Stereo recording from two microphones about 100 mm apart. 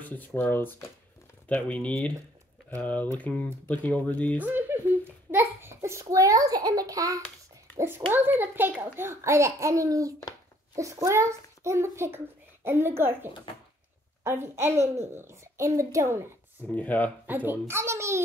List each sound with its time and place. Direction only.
0.0 s speech: 15° left (ahead or behind)
4.4 s a sound: 20° right (ahead or behind); by 7.2 s 35° right (ahead or behind)
7.7 s a child's voice: 25° right (ahead or behind)
16.6 s speech: 15° left (ahead or behind)
17.3 s a child's voice: 20° right (ahead or behind)